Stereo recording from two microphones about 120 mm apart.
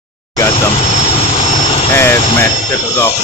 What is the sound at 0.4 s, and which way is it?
Vehicle, 30° left (ahead or behind).